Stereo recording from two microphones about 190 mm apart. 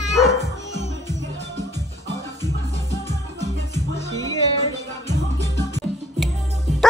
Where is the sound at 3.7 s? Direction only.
15° left (ahead or behind).